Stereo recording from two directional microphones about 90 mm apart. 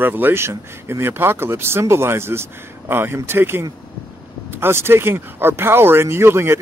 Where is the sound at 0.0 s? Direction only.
20° right (ahead or behind).